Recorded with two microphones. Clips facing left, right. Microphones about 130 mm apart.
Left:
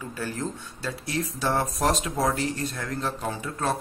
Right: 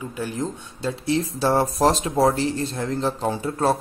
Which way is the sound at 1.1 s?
30° right (ahead or behind).